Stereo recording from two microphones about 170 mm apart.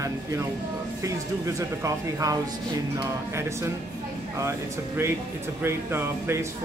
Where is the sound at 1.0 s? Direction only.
20° right (ahead or behind).